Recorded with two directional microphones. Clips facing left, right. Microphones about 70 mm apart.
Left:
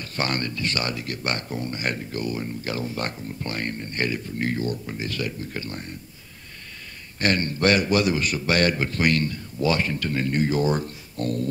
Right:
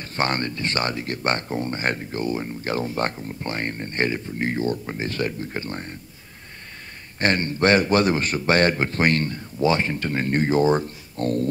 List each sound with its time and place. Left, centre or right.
0.0 s a man's voice: right
2.7 s a man's voice: right
7.2 s a man's voice: right